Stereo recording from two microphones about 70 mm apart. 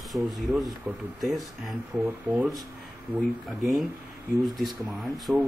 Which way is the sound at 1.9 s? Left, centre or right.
Right.